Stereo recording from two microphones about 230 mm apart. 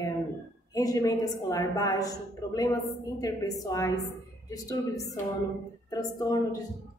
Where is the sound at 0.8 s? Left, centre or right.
Centre.